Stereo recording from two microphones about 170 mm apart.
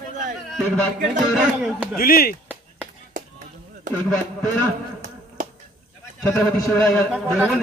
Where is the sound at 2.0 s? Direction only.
60° left (ahead or behind).